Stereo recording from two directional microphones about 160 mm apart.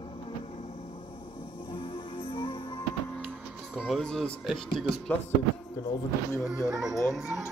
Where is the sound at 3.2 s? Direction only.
5° left (ahead or behind).